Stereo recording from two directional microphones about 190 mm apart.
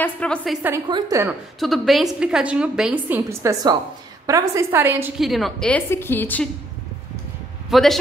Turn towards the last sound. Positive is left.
turn(degrees=0)  # may be behind; listen again after turning